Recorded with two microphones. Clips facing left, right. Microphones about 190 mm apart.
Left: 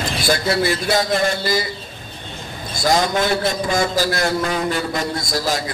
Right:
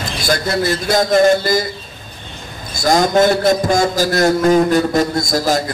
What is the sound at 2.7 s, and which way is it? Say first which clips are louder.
A man's voice: right 5 dB; 45° right (ahead or behind).